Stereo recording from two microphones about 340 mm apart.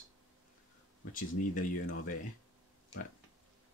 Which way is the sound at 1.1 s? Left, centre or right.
Left.